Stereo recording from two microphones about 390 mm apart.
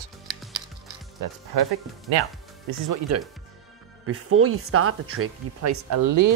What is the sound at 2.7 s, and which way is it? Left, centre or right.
Speech, right.